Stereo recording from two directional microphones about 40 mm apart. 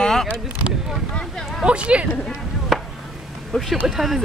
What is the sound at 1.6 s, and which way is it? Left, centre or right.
Speech, right.